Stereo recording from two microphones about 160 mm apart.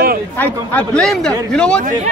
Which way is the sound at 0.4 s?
10° left (ahead or behind).